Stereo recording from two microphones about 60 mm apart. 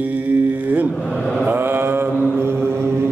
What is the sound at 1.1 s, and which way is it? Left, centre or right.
Mantra, centre.